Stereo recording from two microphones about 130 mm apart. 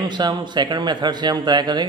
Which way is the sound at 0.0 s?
35° right (ahead or behind).